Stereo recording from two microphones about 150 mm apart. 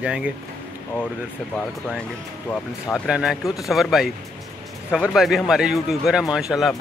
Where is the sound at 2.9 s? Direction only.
5° right (ahead or behind).